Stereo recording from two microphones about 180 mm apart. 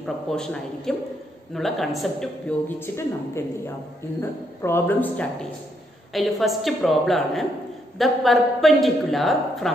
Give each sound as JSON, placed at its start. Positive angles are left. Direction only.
{"t": 0.0, "sound": "a woman's voice", "side_deg": 5}
{"t": 2.8, "sound": "a woman's voice", "side_deg": 15}